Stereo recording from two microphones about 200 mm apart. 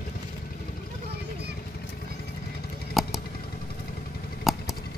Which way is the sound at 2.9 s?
Centre (ahead or behind).